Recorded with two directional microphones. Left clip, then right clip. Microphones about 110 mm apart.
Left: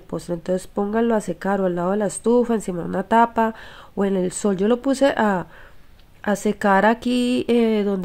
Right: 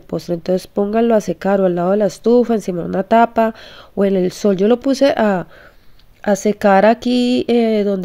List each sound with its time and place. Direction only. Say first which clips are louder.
0.1 s speech: right 6 dB; 35° right (ahead or behind); by 8.0 s 15° right (ahead or behind)